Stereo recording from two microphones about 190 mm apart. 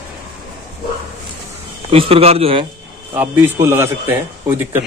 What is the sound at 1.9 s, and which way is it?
Speech, 30° right (ahead or behind).